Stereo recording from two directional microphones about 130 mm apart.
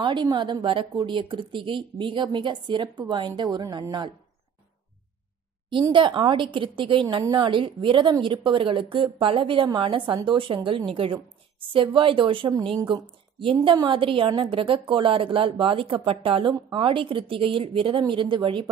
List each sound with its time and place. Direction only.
0.0 s a woman's voice: 35° right (ahead or behind)
5.7 s a woman's voice: 35° right (ahead or behind)